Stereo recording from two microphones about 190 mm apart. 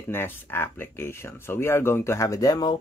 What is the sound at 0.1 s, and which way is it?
Speech, 10° left (ahead or behind).